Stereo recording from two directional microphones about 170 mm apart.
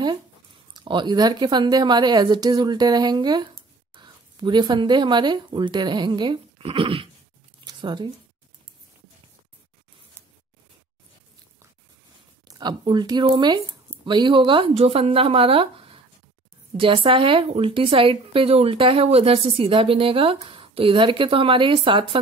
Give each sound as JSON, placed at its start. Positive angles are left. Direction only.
{"t": 0.8, "sound": "speech", "side_deg": -25}
{"t": 7.6, "sound": "a sound", "side_deg": -25}
{"t": 12.4, "sound": "speech", "side_deg": -25}